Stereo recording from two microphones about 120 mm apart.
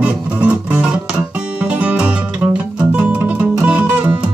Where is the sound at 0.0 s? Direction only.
10° right (ahead or behind).